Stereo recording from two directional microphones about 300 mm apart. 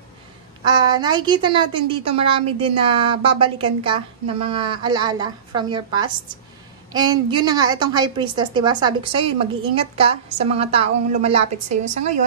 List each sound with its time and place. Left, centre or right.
0.7 s a woman's voice: centre